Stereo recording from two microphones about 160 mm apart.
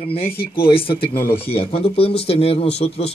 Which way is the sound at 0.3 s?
75° left (ahead or behind).